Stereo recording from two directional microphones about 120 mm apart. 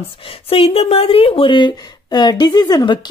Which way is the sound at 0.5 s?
55° left (ahead or behind).